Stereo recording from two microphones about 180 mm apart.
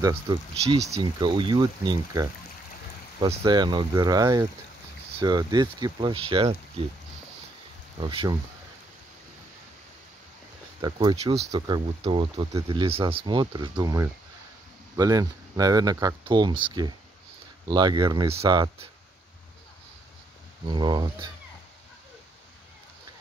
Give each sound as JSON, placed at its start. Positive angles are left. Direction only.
{"t": 0.0, "sound": "speech", "side_deg": -25}
{"t": 0.7, "sound": "speech", "side_deg": -35}
{"t": 3.4, "sound": "speech", "side_deg": -25}
{"t": 8.0, "sound": "speech", "side_deg": -25}
{"t": 10.8, "sound": "speech", "side_deg": -25}
{"t": 20.7, "sound": "speech", "side_deg": -25}